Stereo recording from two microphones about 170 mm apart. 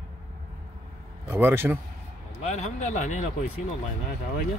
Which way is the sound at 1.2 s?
15° right (ahead or behind).